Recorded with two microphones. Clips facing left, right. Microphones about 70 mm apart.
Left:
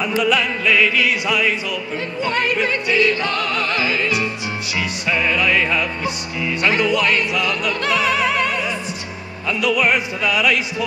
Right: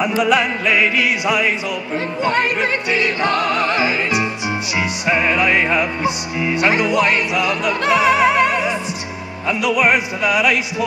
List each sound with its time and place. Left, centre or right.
0.0 s music: centre
9.5 s opera: centre